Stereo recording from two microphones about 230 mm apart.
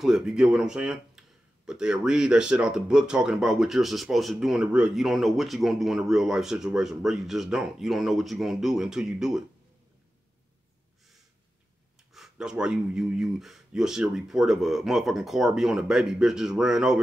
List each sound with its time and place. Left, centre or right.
0.0 s speech: centre
12.1 s speech: centre